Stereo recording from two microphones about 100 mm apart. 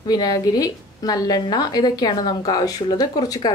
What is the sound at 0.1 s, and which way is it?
A woman's voice, 40° left (ahead or behind).